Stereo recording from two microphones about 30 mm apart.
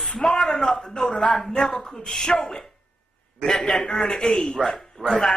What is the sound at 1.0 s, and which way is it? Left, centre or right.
Speech, left.